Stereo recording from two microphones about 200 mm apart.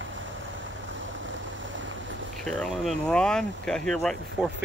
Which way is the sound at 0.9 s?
70° right (ahead or behind).